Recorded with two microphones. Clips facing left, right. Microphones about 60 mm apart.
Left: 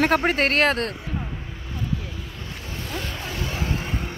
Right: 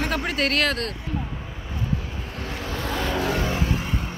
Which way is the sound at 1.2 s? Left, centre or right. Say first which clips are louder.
Right 1 dB; centre.